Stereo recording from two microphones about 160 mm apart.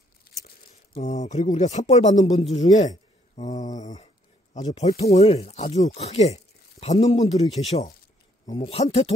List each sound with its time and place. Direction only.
0.9 s speech: 50° left (ahead or behind)
3.3 s mantra: 50° left (ahead or behind)
3.8 s a sound: 50° left (ahead or behind)
4.6 s speech: 45° left (ahead or behind)